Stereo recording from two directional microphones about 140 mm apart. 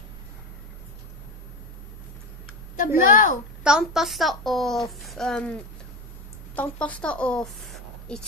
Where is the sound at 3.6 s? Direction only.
5° right (ahead or behind).